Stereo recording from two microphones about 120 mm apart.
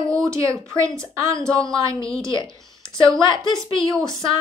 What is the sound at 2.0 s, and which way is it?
A woman's voice, 45° left (ahead or behind).